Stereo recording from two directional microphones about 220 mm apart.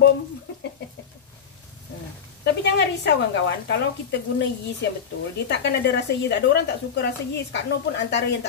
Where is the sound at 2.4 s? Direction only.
50° left (ahead or behind).